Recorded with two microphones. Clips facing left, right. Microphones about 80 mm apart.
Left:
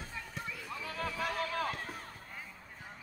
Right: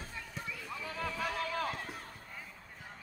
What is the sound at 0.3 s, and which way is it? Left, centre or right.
Run, centre.